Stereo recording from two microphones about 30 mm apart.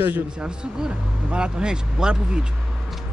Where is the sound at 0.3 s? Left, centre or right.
Right.